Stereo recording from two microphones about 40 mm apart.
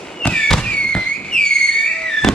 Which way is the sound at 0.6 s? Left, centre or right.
Left.